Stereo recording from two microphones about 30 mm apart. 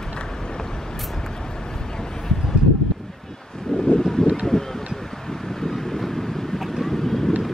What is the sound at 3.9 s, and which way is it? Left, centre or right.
Wind, centre.